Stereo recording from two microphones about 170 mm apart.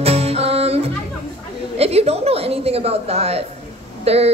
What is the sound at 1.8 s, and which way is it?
A woman's voice, 35° right (ahead or behind).